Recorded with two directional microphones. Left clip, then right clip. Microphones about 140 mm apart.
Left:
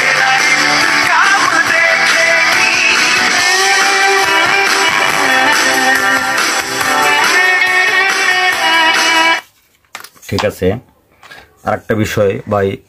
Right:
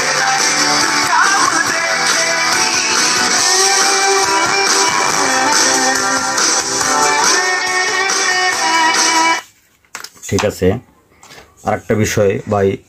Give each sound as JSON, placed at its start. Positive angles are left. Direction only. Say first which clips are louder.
{"t": 0.2, "sound": "music", "louder": "left 4 dB", "side_deg": 5}
{"t": 10.4, "sound": "speech", "louder": "left 1 dB", "side_deg": 0}